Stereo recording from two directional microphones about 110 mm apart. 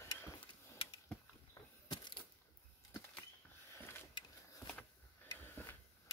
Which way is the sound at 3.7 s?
20° left (ahead or behind).